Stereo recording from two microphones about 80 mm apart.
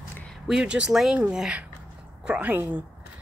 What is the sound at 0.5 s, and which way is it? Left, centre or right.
Speech, centre.